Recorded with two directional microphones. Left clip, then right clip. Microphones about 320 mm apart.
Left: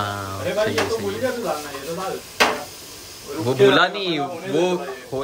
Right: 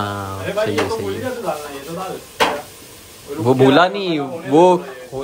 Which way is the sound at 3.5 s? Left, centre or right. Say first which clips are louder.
Right 3 dB; centre.